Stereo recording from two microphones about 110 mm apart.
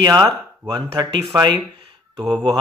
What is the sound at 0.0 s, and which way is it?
Speech, 40° right (ahead or behind).